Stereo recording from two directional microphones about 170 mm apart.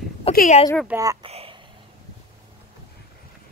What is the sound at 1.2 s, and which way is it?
Speech, 35° right (ahead or behind).